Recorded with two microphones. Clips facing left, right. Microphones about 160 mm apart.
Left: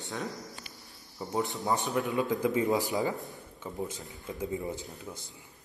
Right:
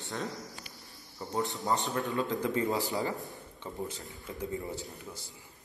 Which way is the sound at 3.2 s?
Centre (ahead or behind).